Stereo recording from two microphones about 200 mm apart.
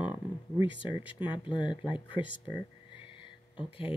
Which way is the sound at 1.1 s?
25° left (ahead or behind).